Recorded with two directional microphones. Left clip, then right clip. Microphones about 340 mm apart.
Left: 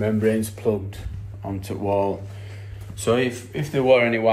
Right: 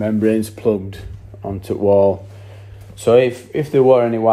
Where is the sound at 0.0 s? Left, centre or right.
Centre.